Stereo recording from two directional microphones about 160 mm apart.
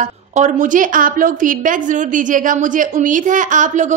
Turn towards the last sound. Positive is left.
turn(degrees=-50)  # may be behind; listen again after turning